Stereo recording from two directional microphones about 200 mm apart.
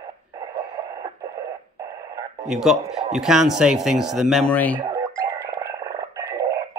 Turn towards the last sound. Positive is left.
turn(degrees=-15)  # may be behind; listen again after turning